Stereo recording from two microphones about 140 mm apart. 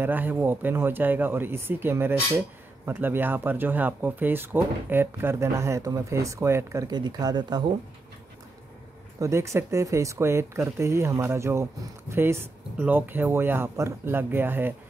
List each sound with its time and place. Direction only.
0.0 s speech: 15° right (ahead or behind); by 7.6 s 30° right (ahead or behind)
9.2 s speech: 20° right (ahead or behind)